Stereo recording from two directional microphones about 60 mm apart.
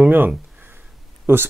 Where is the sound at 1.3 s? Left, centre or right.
Right.